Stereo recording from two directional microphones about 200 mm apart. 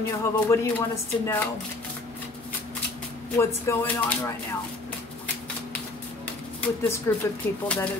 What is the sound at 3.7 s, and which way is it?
Speech, 15° left (ahead or behind).